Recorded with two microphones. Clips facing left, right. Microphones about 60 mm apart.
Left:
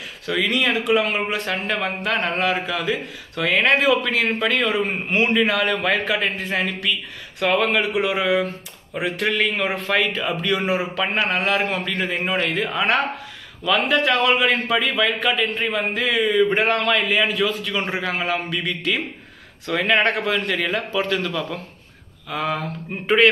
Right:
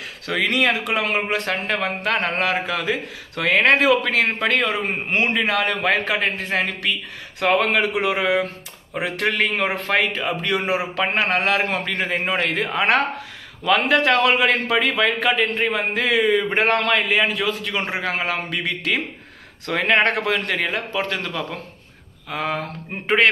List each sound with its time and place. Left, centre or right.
0.3 s a man's voice: right
5.1 s a man's voice: right
11.2 s a man's voice: right
13.9 s a man's voice: right
20.6 s a man's voice: right